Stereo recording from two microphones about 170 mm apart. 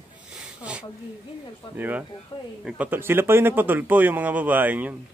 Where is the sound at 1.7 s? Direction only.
10° right (ahead or behind).